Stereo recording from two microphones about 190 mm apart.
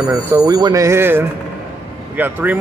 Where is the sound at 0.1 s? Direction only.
20° right (ahead or behind).